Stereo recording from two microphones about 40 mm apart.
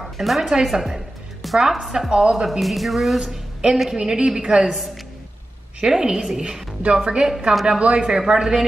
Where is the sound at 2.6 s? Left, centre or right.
Centre.